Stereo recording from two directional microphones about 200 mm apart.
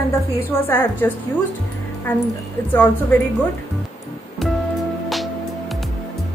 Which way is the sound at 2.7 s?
10° left (ahead or behind).